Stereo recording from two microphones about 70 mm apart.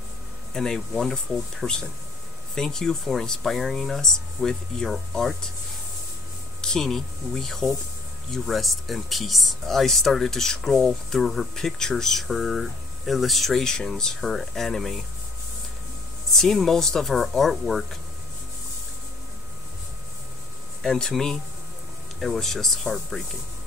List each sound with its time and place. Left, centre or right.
0.5 s speech: centre
6.6 s speech: centre
16.3 s speech: centre
20.8 s speech: centre